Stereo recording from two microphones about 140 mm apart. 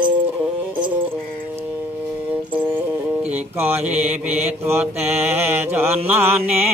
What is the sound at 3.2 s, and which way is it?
Mantra, 15° right (ahead or behind).